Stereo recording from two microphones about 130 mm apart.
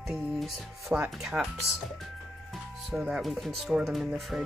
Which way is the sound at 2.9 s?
Centre (ahead or behind).